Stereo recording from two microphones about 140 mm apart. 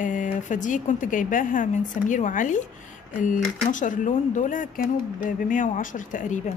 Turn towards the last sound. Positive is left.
turn(degrees=60)  # may be behind; listen again after turning